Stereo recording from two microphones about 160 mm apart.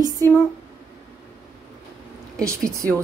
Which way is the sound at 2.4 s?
20° right (ahead or behind).